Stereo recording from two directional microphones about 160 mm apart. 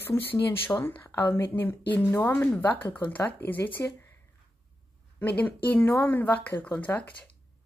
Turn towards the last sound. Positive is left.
turn(degrees=10)  # may be behind; listen again after turning